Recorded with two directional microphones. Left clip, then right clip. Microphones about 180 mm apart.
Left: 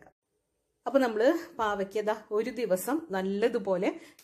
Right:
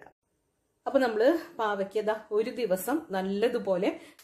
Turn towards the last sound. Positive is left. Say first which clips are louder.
# right 1 dB
turn(degrees=25)  # may be behind; listen again after turning